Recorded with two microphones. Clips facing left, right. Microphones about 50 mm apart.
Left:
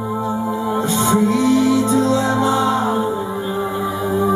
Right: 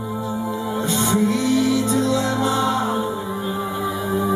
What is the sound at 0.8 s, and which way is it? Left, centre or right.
Music, left.